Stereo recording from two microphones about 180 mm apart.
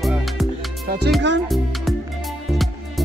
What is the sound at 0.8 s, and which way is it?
Music, 65° right (ahead or behind).